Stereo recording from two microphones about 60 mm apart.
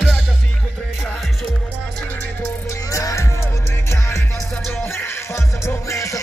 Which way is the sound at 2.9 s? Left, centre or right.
Left.